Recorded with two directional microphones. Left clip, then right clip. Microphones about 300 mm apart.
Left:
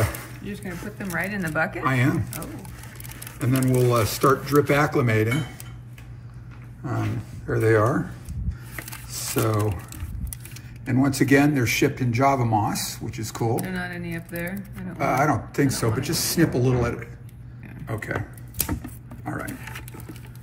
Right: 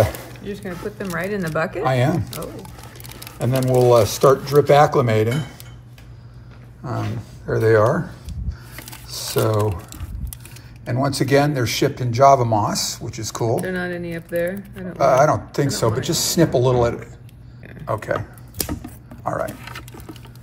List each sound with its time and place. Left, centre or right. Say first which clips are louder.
0.6 s speech: right 6 dB; right
1.9 s speech: right 6 dB; centre
3.3 s speech: right 4 dB; centre
6.8 s speech: right 2 dB; centre
10.9 s speech: right 1 dB; centre
13.7 s speech: right 6 dB; right
15.0 s speech: right 7 dB; centre
19.2 s speech: right 9 dB; centre